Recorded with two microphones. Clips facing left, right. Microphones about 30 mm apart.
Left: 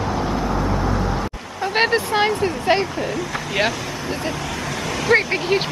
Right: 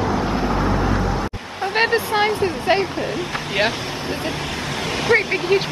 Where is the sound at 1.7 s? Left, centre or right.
Centre.